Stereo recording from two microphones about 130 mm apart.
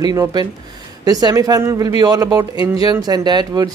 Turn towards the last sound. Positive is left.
turn(degrees=-30)  # may be behind; listen again after turning